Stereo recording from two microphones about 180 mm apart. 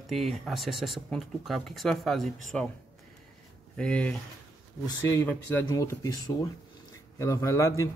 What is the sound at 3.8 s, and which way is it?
Speech, 5° left (ahead or behind).